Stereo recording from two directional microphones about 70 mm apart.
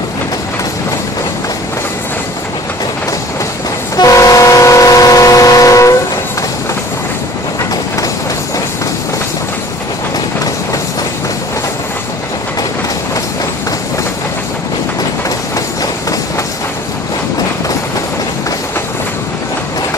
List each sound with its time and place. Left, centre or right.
3.9 s train: left